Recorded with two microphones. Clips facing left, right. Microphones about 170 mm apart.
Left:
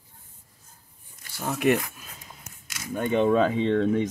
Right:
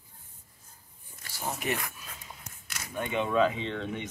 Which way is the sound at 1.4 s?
65° left (ahead or behind).